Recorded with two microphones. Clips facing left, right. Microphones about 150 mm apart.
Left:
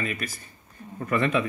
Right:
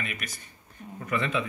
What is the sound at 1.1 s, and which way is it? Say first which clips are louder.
Speech: left 5 dB; 55° left (ahead or behind).